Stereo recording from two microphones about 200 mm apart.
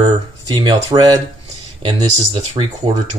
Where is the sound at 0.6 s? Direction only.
20° right (ahead or behind).